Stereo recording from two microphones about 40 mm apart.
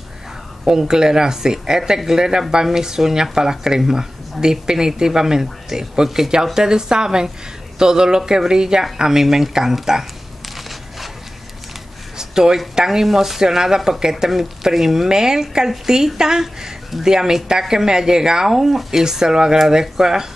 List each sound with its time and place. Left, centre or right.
0.7 s speech: centre
12.2 s a sound: centre
12.7 s speech: centre